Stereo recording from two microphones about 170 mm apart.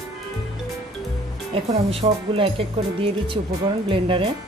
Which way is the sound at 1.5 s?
35° right (ahead or behind).